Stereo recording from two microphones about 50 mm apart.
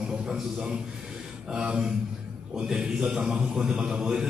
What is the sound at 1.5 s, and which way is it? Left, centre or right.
A man's voice, centre.